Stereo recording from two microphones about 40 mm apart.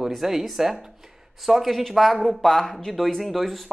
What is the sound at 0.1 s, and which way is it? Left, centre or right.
Speech, centre.